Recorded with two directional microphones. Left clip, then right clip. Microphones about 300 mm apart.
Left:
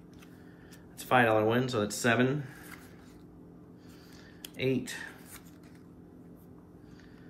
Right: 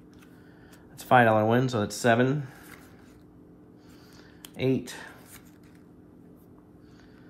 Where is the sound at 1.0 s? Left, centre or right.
Centre.